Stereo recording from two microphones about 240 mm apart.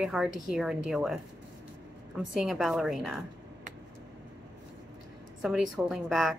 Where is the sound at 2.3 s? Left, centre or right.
Centre.